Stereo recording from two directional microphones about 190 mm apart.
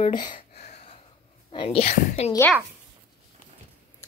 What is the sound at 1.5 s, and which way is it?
Speech, 30° left (ahead or behind).